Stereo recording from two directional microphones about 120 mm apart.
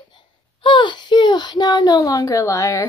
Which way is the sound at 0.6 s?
40° left (ahead or behind).